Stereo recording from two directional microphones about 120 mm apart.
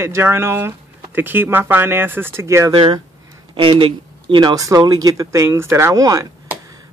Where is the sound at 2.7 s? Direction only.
40° right (ahead or behind).